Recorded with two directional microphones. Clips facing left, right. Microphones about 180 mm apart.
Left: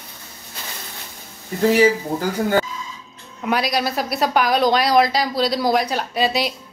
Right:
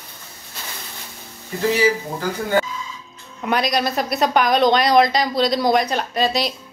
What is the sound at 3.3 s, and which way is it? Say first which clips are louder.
Speech: right 1 dB; 5° left (ahead or behind).